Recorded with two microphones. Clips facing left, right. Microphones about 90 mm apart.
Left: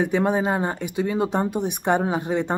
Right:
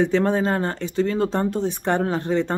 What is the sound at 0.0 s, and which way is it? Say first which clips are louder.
Speech: right 2 dB; 10° left (ahead or behind).